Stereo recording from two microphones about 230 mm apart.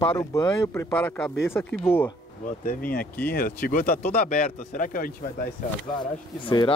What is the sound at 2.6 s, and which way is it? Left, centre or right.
Speech, left.